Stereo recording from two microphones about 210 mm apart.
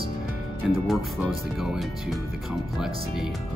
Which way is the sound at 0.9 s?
Centre (ahead or behind).